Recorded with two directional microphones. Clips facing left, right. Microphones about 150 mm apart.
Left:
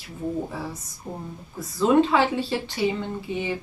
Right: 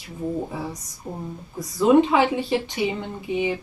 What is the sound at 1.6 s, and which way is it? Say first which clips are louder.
Speech: right 3 dB; 15° right (ahead or behind).